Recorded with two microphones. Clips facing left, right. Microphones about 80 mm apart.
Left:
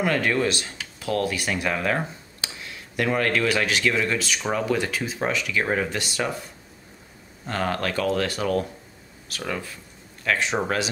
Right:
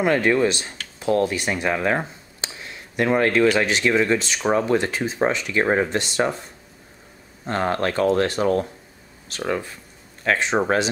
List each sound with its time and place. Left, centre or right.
0.0 s speech: right
7.4 s speech: right